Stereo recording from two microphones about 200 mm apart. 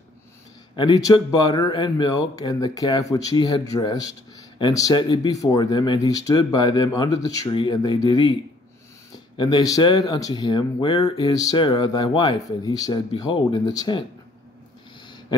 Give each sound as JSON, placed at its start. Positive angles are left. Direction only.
{"t": 0.7, "sound": "speech", "side_deg": 20}
{"t": 9.4, "sound": "speech", "side_deg": 20}